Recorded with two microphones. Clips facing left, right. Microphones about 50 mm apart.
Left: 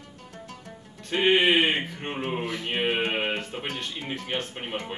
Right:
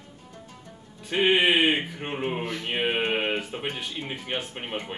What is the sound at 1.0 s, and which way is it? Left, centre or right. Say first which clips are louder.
Speech: even; centre.